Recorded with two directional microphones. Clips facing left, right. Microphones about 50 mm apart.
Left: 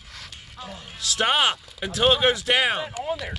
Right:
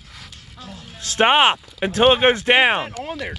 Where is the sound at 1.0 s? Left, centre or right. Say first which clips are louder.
Right 6 dB; right.